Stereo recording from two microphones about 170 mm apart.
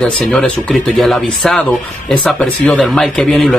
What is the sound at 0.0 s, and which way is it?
A man's voice, 5° left (ahead or behind).